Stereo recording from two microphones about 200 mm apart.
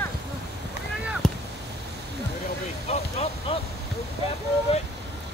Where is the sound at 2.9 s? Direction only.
30° left (ahead or behind).